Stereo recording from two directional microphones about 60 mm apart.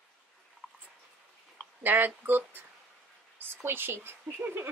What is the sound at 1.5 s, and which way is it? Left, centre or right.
Speech, right.